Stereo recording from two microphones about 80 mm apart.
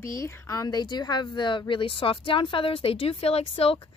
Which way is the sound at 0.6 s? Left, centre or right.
Left.